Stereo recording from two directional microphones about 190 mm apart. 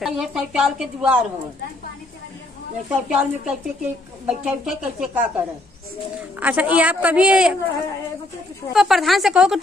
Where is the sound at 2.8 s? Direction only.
5° right (ahead or behind).